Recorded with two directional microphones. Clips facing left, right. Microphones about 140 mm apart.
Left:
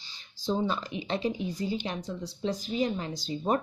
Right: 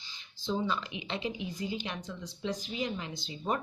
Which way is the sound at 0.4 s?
40° left (ahead or behind).